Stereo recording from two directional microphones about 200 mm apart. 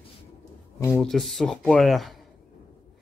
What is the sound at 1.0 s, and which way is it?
A man's voice, centre (ahead or behind).